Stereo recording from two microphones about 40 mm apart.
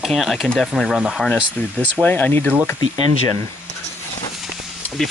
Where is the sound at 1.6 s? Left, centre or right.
Left.